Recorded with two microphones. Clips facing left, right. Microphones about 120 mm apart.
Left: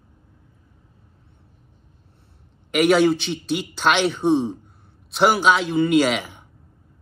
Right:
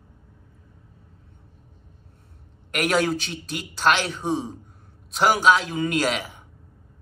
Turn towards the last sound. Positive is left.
turn(degrees=0)  # may be behind; listen again after turning